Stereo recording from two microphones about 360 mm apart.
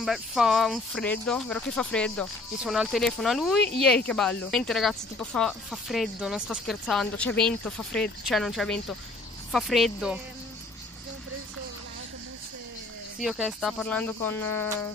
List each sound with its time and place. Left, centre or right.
0.0 s speech: centre
13.2 s speech: centre